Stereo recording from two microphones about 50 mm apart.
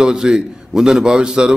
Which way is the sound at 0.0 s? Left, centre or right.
Centre.